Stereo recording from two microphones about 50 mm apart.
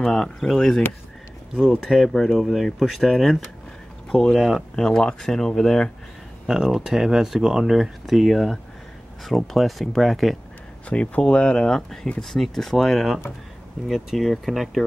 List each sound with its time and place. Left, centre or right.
0.0 s speech: centre
4.7 s speech: centre
6.4 s speech: centre
10.9 s speech: left; by 14.9 s centre